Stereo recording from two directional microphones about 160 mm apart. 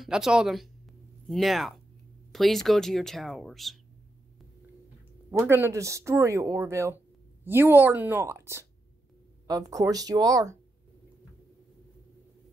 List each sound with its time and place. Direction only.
0.0 s speech: 5° right (ahead or behind)
5.3 s a woman's voice: 15° right (ahead or behind)